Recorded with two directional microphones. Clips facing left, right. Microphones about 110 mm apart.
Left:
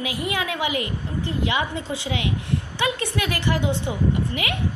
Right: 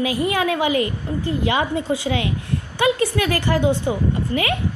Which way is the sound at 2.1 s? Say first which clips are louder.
Right 4 dB; 60° right (ahead or behind).